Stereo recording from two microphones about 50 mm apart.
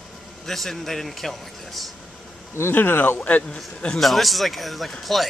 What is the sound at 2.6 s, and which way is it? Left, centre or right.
Speech, left.